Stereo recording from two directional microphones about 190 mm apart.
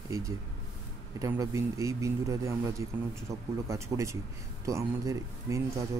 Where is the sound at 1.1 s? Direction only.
15° right (ahead or behind).